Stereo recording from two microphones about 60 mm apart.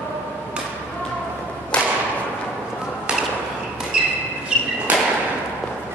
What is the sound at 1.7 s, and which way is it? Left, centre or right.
Whip, left.